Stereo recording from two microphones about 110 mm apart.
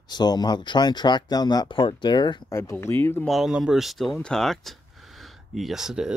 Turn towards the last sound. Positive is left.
turn(degrees=-5)  # may be behind; listen again after turning